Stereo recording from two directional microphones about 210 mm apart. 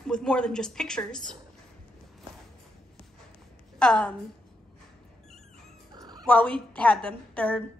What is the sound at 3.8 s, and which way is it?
Speech, 5° left (ahead or behind).